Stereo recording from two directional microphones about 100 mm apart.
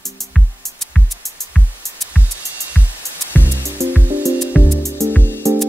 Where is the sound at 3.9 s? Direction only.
15° right (ahead or behind).